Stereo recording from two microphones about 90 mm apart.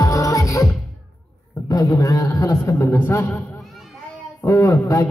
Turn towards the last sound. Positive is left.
turn(degrees=35)  # may be behind; listen again after turning